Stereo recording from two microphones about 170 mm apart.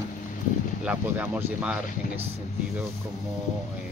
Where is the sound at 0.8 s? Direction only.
10° right (ahead or behind).